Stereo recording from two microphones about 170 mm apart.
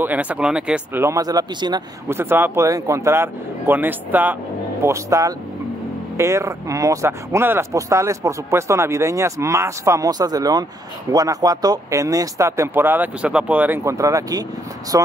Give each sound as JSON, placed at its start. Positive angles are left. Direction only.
{"t": 0.0, "sound": "speech", "side_deg": -10}